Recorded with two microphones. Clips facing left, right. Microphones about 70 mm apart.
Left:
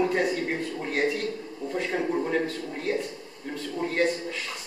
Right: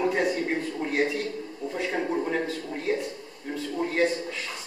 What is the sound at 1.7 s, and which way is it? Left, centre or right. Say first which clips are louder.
A man's voice: left 1 dB; centre.